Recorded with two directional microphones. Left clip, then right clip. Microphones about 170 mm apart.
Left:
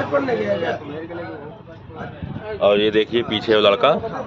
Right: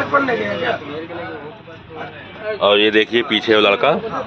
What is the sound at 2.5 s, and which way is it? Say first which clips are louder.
Speech: right 3 dB; 10° left (ahead or behind).